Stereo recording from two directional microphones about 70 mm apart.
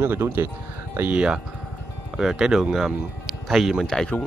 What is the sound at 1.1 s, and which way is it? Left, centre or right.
Speech, centre.